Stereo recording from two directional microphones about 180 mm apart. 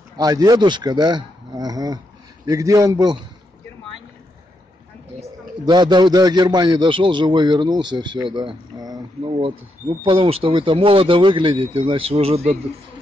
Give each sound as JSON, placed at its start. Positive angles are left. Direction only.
{"t": 0.2, "sound": "a man's voice", "side_deg": -20}
{"t": 5.7, "sound": "a man's voice", "side_deg": -25}